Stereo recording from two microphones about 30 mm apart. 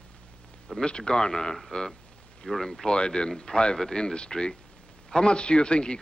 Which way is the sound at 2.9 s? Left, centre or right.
Left.